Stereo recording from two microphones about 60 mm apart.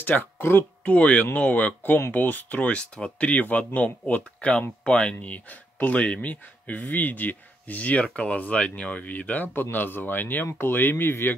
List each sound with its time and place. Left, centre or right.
0.0 s speech: left
1.8 s speech: left
2.1 s speech: left
2.6 s speech: centre; by 11.3 s left